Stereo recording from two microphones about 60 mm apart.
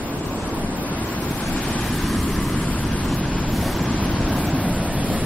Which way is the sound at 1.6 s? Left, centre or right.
Centre.